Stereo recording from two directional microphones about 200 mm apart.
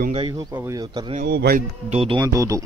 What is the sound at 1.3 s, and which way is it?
Speech, 50° right (ahead or behind).